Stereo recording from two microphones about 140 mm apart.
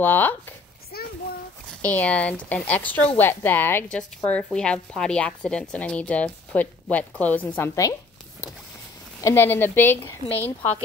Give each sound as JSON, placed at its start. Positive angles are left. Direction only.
{"t": 0.0, "sound": "a woman's voice", "side_deg": 15}
{"t": 0.9, "sound": "a sound", "side_deg": 90}
{"t": 1.8, "sound": "a woman's voice", "side_deg": 10}
{"t": 9.2, "sound": "a woman's voice", "side_deg": 15}